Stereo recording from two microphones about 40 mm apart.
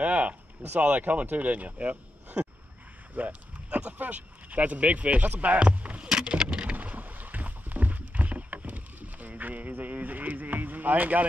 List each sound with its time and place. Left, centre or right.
0.0 s speech: right
3.2 s speech: right
6.0 s a sound: right
6.6 s rowboat: right